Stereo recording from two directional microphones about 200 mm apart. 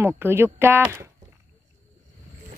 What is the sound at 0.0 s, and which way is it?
Speech, 10° right (ahead or behind).